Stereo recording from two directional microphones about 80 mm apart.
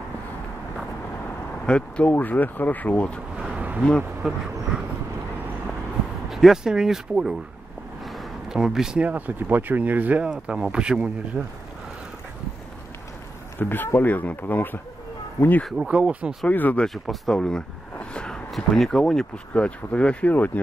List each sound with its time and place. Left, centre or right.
1.7 s speech: centre
3.3 s a sound: centre
4.2 s speech: centre
6.3 s speech: centre
8.0 s a sound: centre
9.0 s speech: right
13.6 s speech: left
15.9 s speech: centre
16.4 s speech: centre
16.8 s speech: centre; by 20.6 s left